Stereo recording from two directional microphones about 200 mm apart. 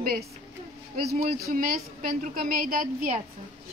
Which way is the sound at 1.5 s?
45° right (ahead or behind).